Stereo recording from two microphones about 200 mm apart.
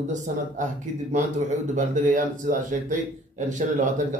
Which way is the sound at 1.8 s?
40° right (ahead or behind).